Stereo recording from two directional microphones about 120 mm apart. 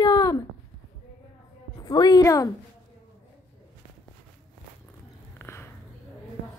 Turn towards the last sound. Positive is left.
turn(degrees=20)  # may be behind; listen again after turning